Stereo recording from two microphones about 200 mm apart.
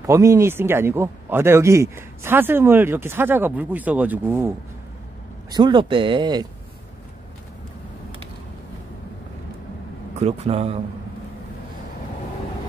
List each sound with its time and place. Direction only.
0.0 s speech: 15° right (ahead or behind)
5.5 s speech: 25° right (ahead or behind)
10.2 s speech: 30° right (ahead or behind)